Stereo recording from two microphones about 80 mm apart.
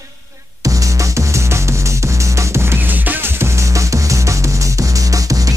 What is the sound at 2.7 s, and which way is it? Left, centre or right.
Music, right.